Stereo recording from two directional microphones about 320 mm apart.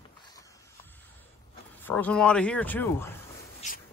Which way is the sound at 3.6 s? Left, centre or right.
Left.